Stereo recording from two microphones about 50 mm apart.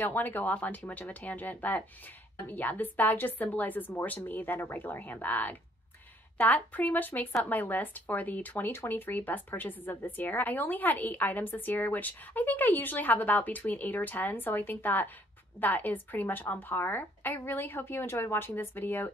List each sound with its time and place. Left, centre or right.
0.0 s speech: left
18.3 s speech: left